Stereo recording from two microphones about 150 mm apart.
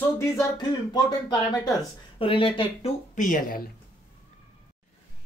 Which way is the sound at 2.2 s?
35° left (ahead or behind).